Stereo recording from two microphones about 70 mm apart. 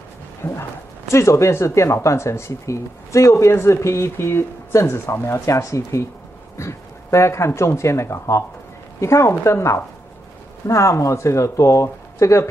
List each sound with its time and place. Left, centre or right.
0.4 s speech: left